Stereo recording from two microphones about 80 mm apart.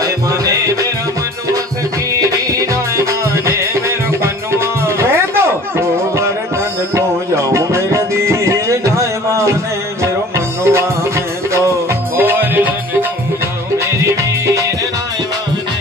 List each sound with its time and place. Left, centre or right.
0.0 s music: right
2.2 s music: right
10.6 s music: right
12.2 s music: right
14.0 s music: right